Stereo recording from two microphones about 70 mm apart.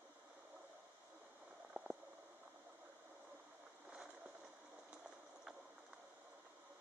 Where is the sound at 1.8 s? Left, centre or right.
Right.